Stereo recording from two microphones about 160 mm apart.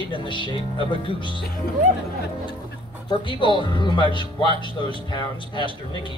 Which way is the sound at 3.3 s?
30° left (ahead or behind).